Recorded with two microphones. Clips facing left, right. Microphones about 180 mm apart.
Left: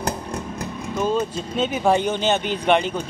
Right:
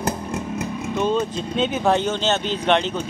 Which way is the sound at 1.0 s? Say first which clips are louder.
Even; 5° left (ahead or behind).